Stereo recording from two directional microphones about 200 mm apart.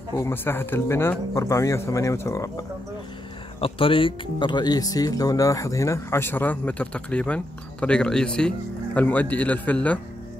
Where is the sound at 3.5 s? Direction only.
25° left (ahead or behind); by 10.0 s 5° left (ahead or behind).